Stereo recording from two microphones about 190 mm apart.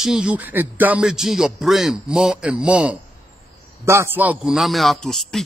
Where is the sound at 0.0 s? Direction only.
5° right (ahead or behind).